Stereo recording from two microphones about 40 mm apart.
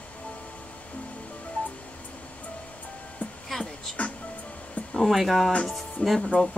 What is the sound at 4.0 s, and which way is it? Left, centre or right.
Music, left.